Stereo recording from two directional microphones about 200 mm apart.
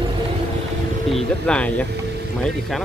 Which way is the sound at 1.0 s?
5° left (ahead or behind).